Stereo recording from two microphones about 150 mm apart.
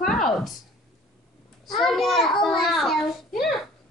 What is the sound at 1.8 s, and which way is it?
A woman's voice, centre (ahead or behind).